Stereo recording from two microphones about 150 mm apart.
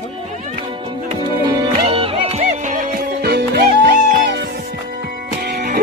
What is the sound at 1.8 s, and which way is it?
Music, 40° right (ahead or behind).